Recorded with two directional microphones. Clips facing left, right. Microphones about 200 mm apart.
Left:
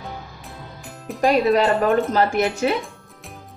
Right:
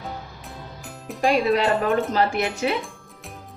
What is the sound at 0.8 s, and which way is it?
Music, centre (ahead or behind).